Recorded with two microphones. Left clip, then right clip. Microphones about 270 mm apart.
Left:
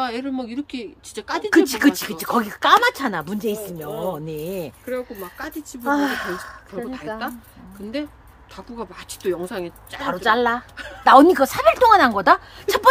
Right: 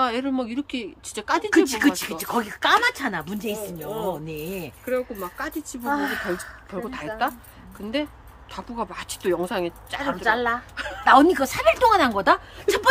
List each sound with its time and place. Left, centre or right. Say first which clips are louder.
0.0 s a woman's voice: right 2 dB; centre
1.5 s speech: left 5 dB; centre
4.8 s a woman's voice: right 6 dB; centre
5.9 s speech: left 4 dB; left
6.7 s a woman's voice: even; centre
8.5 s a woman's voice: right 3 dB; centre
10.0 s speech: left 4 dB; left
10.8 s a woman's voice: right 4 dB; centre
11.1 s a woman's voice: left 4 dB; left